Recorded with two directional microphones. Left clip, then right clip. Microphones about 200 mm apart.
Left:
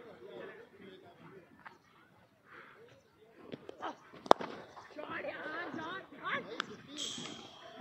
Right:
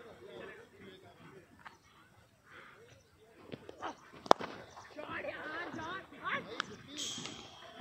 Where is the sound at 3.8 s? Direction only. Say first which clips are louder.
Even; centre (ahead or behind).